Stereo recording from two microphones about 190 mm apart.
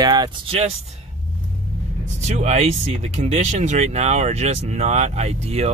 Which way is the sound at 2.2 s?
35° right (ahead or behind).